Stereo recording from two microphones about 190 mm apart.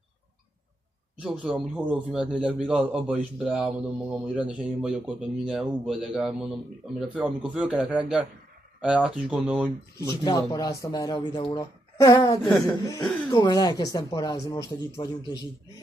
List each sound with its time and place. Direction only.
1.2 s speech: 5° right (ahead or behind)
10.2 s speech: 20° left (ahead or behind)
12.6 s chuckle: 15° left (ahead or behind)
13.4 s speech: 20° left (ahead or behind)